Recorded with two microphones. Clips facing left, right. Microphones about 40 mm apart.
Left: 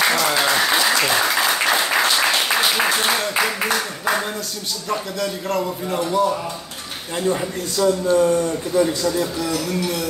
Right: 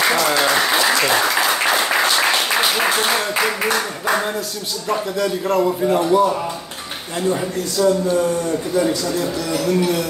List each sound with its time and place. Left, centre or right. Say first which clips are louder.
0.0 s applause: right 2 dB; centre
4.8 s a man's voice: right 4 dB; centre